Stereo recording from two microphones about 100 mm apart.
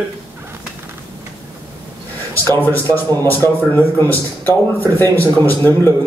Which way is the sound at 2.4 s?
20° left (ahead or behind).